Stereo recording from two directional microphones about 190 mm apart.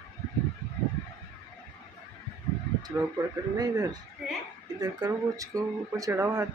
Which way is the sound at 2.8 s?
20° right (ahead or behind).